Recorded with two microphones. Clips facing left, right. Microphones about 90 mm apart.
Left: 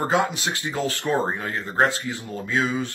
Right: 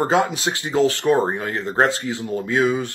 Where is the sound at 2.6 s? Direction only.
60° right (ahead or behind).